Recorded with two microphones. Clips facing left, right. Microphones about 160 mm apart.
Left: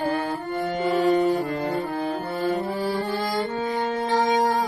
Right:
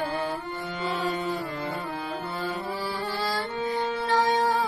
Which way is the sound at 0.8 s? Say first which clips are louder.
Left 9 dB; 45° left (ahead or behind).